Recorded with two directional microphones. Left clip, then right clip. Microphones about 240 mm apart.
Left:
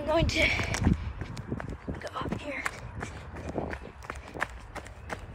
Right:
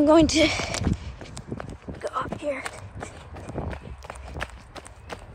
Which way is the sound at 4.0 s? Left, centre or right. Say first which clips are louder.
Left 1 dB; centre.